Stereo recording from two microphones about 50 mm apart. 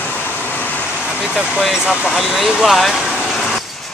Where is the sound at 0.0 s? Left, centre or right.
Left.